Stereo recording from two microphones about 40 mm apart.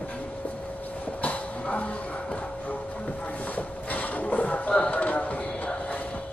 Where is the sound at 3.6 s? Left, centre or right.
Left.